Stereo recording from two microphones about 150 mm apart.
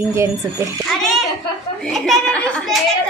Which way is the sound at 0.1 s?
20° right (ahead or behind).